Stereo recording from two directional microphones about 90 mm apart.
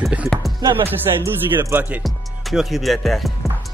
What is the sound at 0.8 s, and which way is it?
Music, 25° right (ahead or behind).